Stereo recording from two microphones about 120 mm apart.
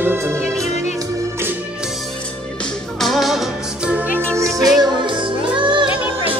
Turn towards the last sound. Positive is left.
turn(degrees=-45)  # may be behind; listen again after turning